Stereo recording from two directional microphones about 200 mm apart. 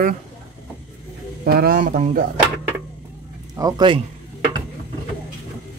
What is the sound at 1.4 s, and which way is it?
Speech, 50° right (ahead or behind).